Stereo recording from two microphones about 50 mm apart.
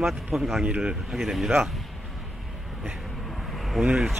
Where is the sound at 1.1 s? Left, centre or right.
Centre.